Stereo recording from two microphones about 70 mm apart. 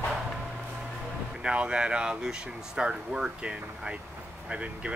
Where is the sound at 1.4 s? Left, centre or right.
Centre.